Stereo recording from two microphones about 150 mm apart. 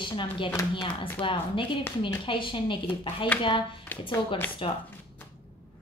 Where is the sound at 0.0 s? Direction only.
35° left (ahead or behind).